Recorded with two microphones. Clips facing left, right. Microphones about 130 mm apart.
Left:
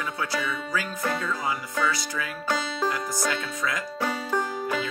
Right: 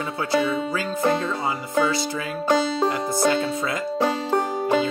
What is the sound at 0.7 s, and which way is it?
Music, 25° right (ahead or behind).